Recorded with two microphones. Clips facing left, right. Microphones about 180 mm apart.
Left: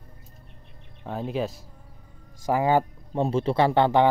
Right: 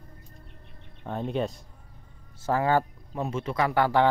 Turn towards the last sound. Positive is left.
turn(degrees=20)  # may be behind; listen again after turning